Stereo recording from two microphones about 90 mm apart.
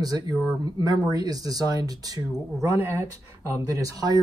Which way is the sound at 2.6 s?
30° right (ahead or behind).